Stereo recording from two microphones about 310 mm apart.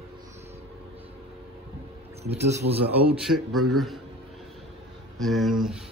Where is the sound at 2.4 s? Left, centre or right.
Centre.